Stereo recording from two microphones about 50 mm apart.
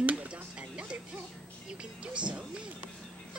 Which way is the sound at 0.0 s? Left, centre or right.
Right.